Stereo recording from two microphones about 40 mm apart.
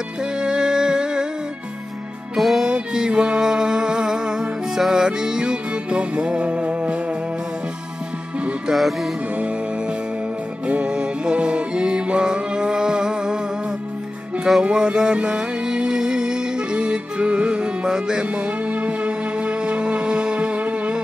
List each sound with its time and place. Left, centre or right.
0.4 s music: centre
2.3 s music: centre
2.6 s music: centre
8.7 s music: centre
10.7 s music: right
14.6 s music: right
18.3 s music: right